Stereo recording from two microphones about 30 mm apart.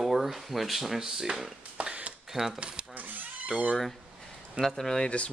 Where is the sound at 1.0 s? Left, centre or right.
Centre.